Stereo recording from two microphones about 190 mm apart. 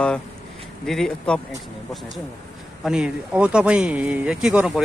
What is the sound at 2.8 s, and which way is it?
Speech, 5° right (ahead or behind).